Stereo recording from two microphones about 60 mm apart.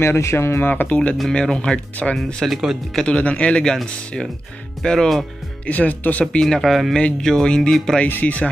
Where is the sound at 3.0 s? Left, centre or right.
Left.